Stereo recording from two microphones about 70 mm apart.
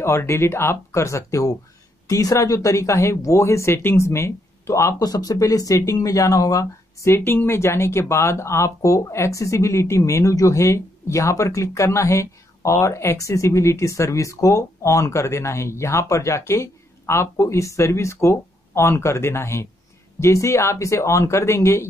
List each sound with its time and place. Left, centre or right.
0.0 s speech: left
4.9 s speech: left
7.2 s speech: left